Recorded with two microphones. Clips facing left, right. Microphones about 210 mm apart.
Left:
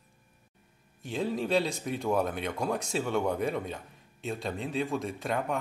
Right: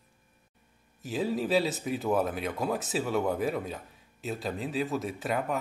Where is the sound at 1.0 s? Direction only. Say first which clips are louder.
Right 1 dB; 5° right (ahead or behind).